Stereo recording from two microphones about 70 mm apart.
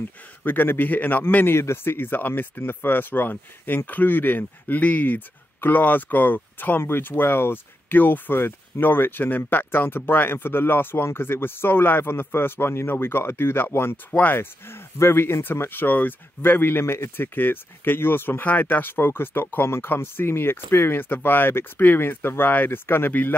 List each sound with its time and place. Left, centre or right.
0.4 s a man's voice: left